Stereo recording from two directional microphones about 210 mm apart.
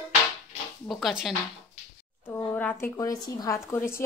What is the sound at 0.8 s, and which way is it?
A woman's voice, centre (ahead or behind).